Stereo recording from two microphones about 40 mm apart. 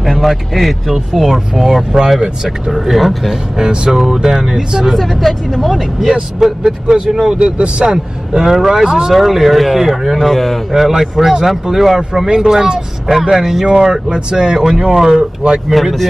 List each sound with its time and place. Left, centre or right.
0.0 s speech: centre
2.7 s speech: centre
3.5 s speech: centre
5.0 s speech: centre
10.7 s speech: centre
15.7 s speech: centre